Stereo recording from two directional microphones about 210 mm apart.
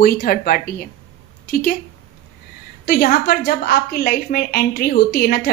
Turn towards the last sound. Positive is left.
turn(degrees=45)  # may be behind; listen again after turning